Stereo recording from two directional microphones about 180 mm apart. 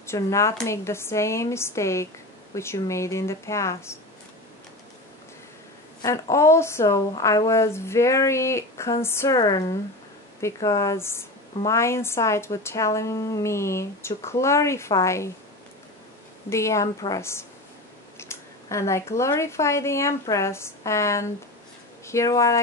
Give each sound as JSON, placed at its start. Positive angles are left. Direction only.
{"t": 0.0, "sound": "a woman's voice", "side_deg": 15}
{"t": 6.0, "sound": "a woman's voice", "side_deg": 15}
{"t": 16.4, "sound": "a woman's voice", "side_deg": 15}